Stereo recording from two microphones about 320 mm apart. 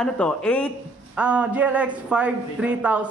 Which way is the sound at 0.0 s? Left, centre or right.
Centre.